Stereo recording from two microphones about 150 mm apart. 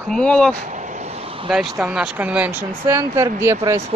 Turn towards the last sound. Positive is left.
turn(degrees=-20)  # may be behind; listen again after turning